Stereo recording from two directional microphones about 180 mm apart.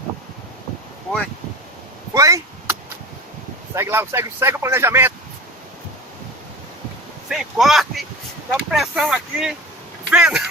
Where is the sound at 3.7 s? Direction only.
15° right (ahead or behind).